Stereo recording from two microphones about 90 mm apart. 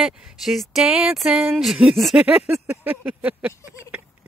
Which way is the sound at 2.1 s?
15° right (ahead or behind).